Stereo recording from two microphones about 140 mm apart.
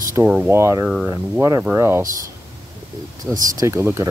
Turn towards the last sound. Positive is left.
turn(degrees=-20)  # may be behind; listen again after turning